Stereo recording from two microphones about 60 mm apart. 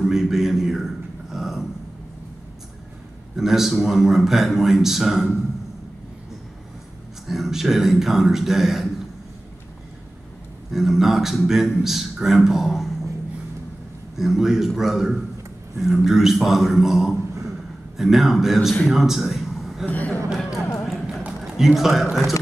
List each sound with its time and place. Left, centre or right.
0.0 s a sound: centre
3.3 s a man's voice: centre
7.2 s a man's voice: centre
10.7 s a man's voice: centre
14.1 s a man's voice: centre
19.9 s speech: left
20.8 s clip-clop: centre
21.4 s speech: centre